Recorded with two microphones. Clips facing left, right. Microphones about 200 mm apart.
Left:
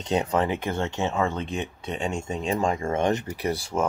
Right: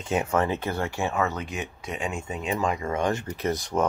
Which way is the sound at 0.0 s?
20° left (ahead or behind).